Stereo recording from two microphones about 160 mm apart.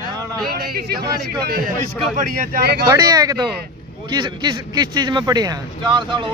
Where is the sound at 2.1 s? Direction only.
65° right (ahead or behind).